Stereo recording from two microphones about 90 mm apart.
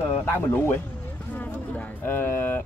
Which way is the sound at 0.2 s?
25° left (ahead or behind).